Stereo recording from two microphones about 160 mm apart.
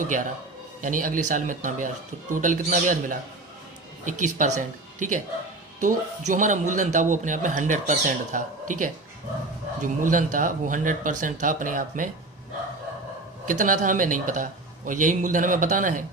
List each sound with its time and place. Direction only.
0.0 s a man's voice: 55° right (ahead or behind)
13.5 s a man's voice: 55° right (ahead or behind)